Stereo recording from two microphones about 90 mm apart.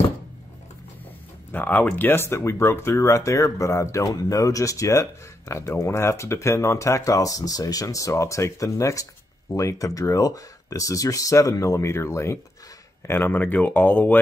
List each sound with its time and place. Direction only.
1.5 s speech: 20° left (ahead or behind)